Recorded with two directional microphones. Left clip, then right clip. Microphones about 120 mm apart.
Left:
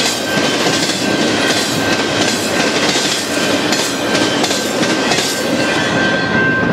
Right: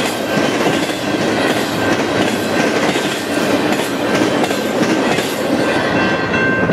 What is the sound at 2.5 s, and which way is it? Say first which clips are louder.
Train: even; 20° left (ahead or behind).